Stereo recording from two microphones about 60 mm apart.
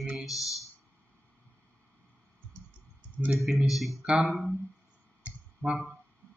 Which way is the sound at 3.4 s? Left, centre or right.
Centre.